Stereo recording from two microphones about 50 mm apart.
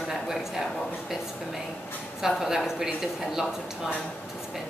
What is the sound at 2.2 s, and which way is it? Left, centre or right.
Speech, centre.